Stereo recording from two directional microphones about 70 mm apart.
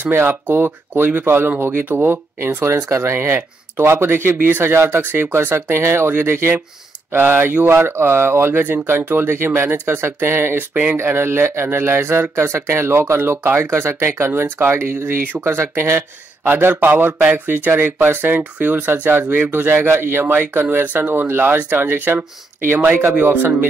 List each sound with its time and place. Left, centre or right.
0.1 s speech: right
10.7 s speech: centre
11.1 s speech: right